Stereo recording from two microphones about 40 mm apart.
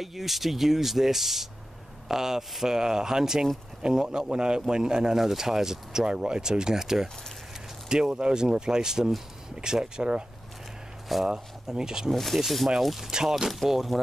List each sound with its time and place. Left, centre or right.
0.0 s speech: centre; by 10.2 s right
11.2 s speech: centre
12.1 s speech: centre